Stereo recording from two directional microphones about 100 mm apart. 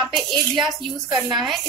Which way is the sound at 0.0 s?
Centre (ahead or behind).